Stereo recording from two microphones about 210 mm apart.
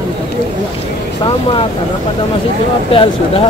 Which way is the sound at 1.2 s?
25° left (ahead or behind).